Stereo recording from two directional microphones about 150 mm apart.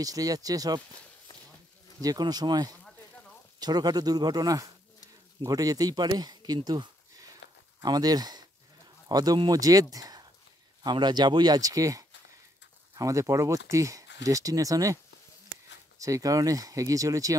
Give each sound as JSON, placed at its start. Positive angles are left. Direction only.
{"t": 0.0, "sound": "speech", "side_deg": -25}
{"t": 2.0, "sound": "speech", "side_deg": -25}
{"t": 16.0, "sound": "speech", "side_deg": -20}